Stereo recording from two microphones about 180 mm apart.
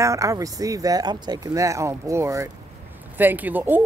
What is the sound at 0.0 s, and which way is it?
Speech, 20° right (ahead or behind).